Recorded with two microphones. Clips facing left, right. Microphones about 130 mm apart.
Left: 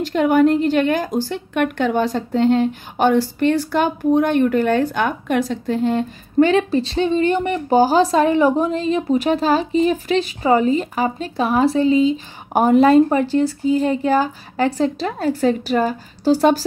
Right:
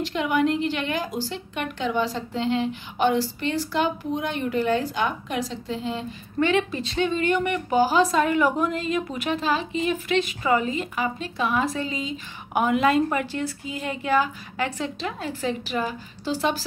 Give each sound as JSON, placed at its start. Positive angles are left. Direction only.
{"t": 0.0, "sound": "a woman's voice", "side_deg": 45}
{"t": 6.4, "sound": "a woman's voice", "side_deg": 35}